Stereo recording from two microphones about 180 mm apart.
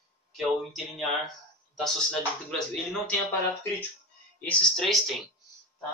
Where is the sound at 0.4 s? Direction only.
Centre (ahead or behind).